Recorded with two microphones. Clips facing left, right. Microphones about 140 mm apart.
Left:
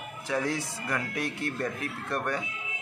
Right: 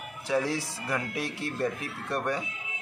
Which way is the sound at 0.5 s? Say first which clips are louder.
Right 1 dB; 35° right (ahead or behind).